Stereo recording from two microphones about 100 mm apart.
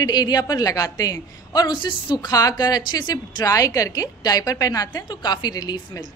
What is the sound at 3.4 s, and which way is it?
A woman's voice, 35° left (ahead or behind).